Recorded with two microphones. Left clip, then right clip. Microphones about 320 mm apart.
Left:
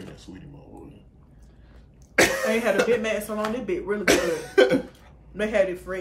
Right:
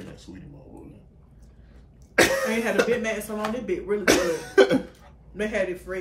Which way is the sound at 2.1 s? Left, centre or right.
Centre.